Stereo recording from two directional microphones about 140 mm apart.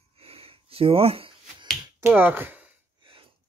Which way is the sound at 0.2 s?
45° right (ahead or behind).